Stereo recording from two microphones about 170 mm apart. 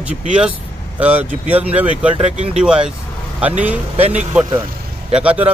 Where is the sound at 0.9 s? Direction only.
10° right (ahead or behind).